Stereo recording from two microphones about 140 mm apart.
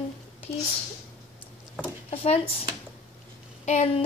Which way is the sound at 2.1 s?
45° left (ahead or behind).